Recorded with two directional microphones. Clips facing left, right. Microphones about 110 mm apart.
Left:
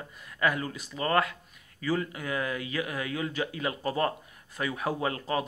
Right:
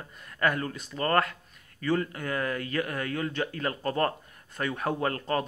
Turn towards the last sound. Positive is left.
turn(degrees=10)  # may be behind; listen again after turning